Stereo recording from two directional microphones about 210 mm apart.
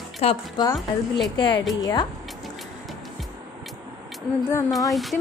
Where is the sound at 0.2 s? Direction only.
30° left (ahead or behind).